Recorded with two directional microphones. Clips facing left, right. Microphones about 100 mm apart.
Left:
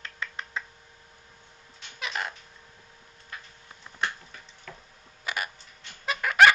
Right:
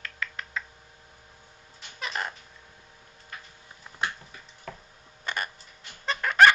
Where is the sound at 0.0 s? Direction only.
25° left (ahead or behind).